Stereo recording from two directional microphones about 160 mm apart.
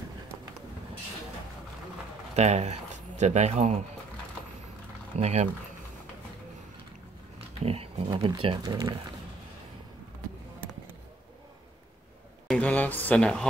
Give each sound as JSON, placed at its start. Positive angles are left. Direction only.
{"t": 2.3, "sound": "speech", "side_deg": -45}
{"t": 5.2, "sound": "speech", "side_deg": -45}
{"t": 7.3, "sound": "a sound", "side_deg": -40}
{"t": 8.3, "sound": "speech", "side_deg": -30}
{"t": 12.4, "sound": "speech", "side_deg": 5}